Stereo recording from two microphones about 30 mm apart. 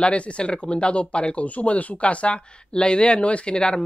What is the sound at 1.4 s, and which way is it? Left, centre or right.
Speech, left.